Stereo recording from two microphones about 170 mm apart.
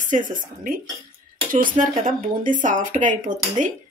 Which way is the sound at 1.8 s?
50° right (ahead or behind).